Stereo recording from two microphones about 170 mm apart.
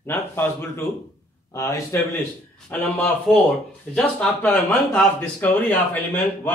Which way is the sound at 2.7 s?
5° left (ahead or behind).